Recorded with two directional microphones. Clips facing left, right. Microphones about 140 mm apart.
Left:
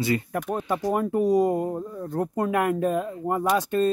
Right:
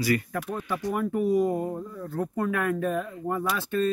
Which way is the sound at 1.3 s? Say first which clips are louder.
Left 3 dB; 90° left.